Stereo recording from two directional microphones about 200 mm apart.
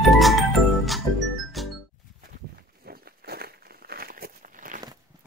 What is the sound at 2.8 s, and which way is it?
Crumpling, 50° right (ahead or behind).